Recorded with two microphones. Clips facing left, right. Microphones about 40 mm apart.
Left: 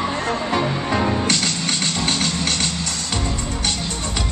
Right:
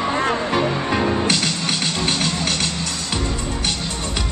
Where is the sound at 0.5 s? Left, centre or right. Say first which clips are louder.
Right 1 dB; centre.